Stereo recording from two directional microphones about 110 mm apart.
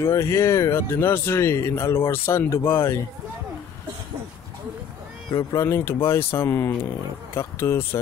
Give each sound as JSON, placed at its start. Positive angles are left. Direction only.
{"t": 0.0, "sound": "speech", "side_deg": 25}
{"t": 5.3, "sound": "speech", "side_deg": 30}